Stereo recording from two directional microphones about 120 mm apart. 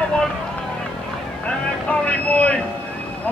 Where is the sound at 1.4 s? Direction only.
10° left (ahead or behind).